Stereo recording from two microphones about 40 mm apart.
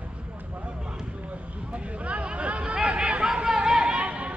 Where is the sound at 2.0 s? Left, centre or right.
Right.